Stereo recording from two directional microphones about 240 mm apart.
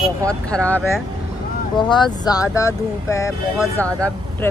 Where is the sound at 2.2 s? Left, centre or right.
Centre.